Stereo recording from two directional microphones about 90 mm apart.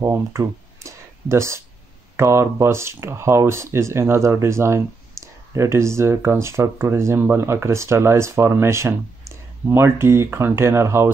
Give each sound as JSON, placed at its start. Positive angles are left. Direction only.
{"t": 0.1, "sound": "speech", "side_deg": -35}